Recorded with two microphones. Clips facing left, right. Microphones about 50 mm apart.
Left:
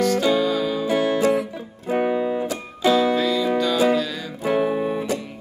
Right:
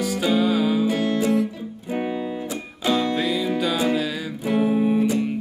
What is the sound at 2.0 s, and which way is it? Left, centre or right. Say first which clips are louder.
Music: left 6 dB; left.